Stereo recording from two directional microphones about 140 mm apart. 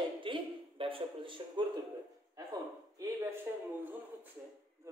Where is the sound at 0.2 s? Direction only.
40° right (ahead or behind).